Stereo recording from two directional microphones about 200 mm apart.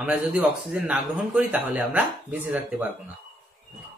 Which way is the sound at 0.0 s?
5° right (ahead or behind).